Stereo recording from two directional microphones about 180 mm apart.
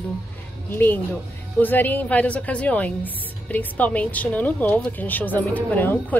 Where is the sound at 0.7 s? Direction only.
10° left (ahead or behind).